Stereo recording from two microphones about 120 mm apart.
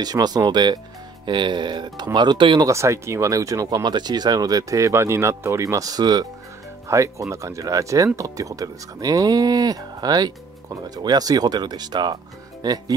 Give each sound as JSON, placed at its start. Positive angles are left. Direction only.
{"t": 0.0, "sound": "speech", "side_deg": -35}
{"t": 2.6, "sound": "speech", "side_deg": -25}